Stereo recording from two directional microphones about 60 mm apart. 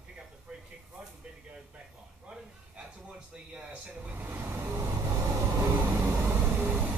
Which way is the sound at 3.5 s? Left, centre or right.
Centre.